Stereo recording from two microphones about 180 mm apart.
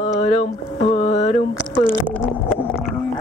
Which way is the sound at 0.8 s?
40° left (ahead or behind).